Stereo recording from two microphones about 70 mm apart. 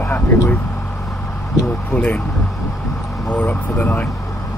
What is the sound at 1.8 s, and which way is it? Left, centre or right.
Speech, left.